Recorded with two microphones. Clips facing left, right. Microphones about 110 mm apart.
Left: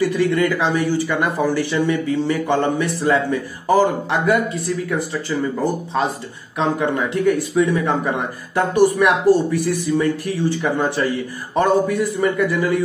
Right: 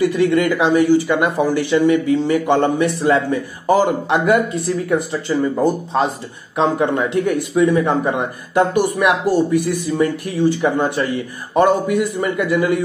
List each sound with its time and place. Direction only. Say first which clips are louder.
0.0 s speech: right 2 dB; 20° right (ahead or behind)
5.6 s speech: right 3 dB; 20° right (ahead or behind)